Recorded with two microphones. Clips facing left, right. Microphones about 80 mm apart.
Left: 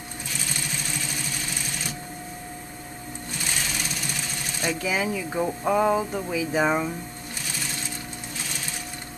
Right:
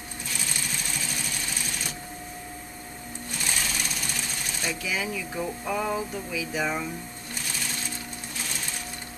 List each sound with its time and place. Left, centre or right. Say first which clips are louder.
4.6 s music: left 5 dB; left